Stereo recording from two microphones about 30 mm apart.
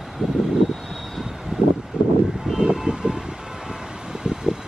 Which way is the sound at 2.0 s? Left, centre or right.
Right.